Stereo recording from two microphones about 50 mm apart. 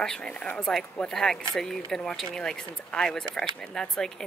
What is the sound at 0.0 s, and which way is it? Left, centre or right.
Speech, centre.